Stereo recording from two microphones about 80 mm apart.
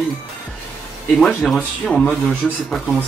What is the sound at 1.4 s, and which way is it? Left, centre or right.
Speech, centre.